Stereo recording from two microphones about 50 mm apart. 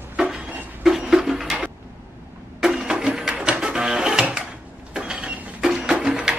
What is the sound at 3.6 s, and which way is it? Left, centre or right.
Printer, centre.